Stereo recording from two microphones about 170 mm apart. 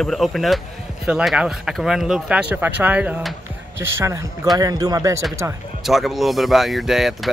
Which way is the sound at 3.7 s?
15° right (ahead or behind).